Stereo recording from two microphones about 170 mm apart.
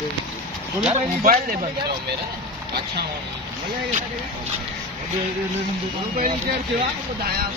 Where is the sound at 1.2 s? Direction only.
55° right (ahead or behind).